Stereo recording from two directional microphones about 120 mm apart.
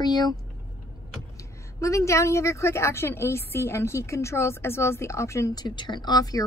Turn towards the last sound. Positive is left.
turn(degrees=30)  # may be behind; listen again after turning